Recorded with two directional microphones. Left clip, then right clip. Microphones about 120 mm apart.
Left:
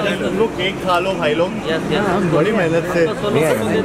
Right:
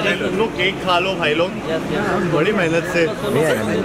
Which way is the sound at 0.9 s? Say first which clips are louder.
Left 2 dB; centre (ahead or behind).